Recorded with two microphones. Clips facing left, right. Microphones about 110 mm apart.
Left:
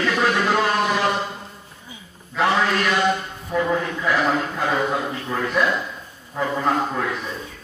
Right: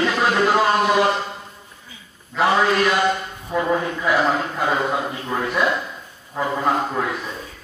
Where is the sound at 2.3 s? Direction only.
15° right (ahead or behind).